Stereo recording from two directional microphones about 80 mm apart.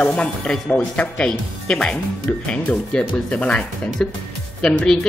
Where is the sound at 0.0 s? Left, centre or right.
Centre.